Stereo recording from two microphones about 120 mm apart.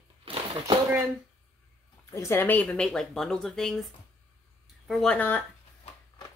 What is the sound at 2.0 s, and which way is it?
Speech, 25° left (ahead or behind).